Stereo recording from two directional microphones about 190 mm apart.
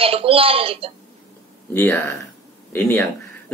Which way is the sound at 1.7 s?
10° left (ahead or behind).